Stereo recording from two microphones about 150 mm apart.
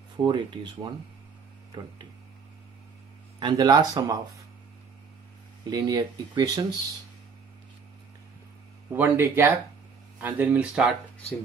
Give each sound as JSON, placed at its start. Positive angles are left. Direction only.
{"t": 0.2, "sound": "speech", "side_deg": -30}
{"t": 3.3, "sound": "speech", "side_deg": -30}
{"t": 5.7, "sound": "speech", "side_deg": -25}
{"t": 8.9, "sound": "speech", "side_deg": -15}